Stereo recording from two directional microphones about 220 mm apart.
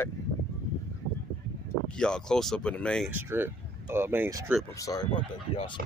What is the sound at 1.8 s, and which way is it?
Speech, 5° left (ahead or behind).